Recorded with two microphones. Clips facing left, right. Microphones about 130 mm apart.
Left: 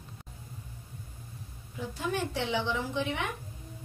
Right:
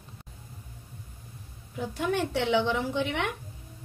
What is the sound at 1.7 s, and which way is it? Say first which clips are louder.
A woman's voice: right 4 dB; 70° right (ahead or behind).